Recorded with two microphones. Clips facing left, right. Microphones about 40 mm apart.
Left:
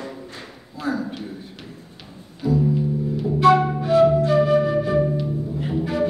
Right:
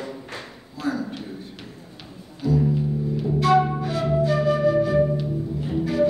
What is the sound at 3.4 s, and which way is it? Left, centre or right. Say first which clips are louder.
Flute: left 3 dB; centre.